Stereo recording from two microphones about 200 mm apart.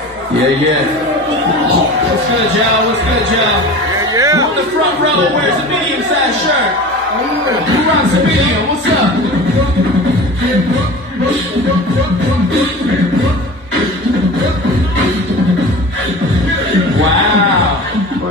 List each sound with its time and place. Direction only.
4.1 s chatter: 15° right (ahead or behind)